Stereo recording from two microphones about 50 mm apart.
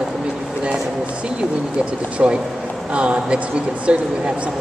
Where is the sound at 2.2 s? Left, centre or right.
Centre.